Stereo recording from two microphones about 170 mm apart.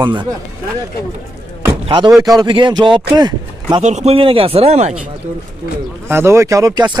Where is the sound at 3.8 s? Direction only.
40° right (ahead or behind).